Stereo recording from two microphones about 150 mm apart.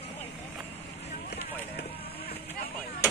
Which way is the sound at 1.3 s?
90° left.